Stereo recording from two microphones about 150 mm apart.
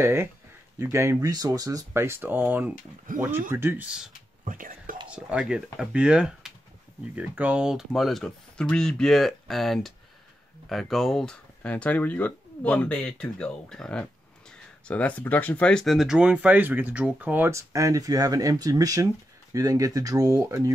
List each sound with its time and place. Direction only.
0.0 s speech: 15° right (ahead or behind)
4.5 s speech: 65° right (ahead or behind)
5.1 s speech: 5° right (ahead or behind); by 20.7 s 20° right (ahead or behind)